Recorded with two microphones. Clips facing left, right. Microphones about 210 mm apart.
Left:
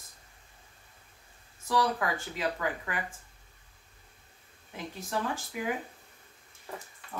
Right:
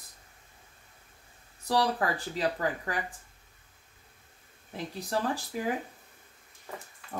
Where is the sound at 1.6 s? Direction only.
35° right (ahead or behind).